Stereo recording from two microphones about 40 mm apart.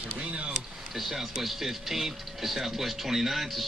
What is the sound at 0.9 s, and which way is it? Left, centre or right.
Speech, centre.